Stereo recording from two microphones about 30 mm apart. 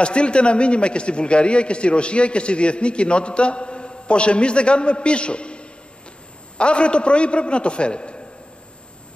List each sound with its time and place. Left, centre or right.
0.0 s a man's voice: left